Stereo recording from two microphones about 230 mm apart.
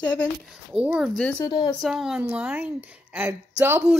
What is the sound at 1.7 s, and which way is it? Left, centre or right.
A woman's voice, centre.